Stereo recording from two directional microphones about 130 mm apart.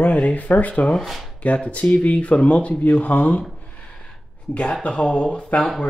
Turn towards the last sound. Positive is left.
turn(degrees=10)  # may be behind; listen again after turning